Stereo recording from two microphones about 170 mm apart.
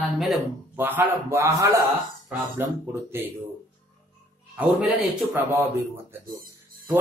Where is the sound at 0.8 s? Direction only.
10° right (ahead or behind).